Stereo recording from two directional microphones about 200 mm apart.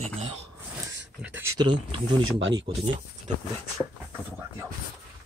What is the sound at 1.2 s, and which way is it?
Speech, 5° right (ahead or behind).